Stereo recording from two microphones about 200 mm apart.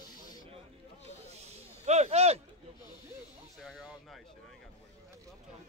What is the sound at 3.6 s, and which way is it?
Music, centre (ahead or behind).